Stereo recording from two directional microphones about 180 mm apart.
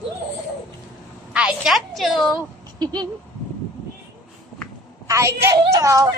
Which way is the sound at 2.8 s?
25° right (ahead or behind).